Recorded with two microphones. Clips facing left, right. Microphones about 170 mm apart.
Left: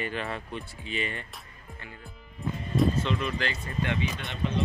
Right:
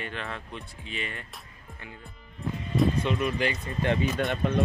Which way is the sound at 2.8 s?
10° right (ahead or behind).